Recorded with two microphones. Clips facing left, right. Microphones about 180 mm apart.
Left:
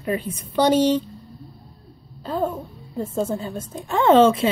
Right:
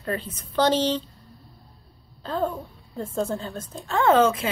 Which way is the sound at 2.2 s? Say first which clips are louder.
Left 2 dB; 10° left (ahead or behind).